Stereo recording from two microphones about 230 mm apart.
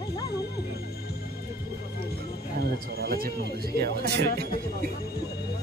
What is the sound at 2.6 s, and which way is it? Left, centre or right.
Speech, right.